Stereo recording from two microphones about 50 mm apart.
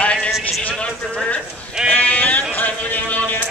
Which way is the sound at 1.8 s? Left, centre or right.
Left.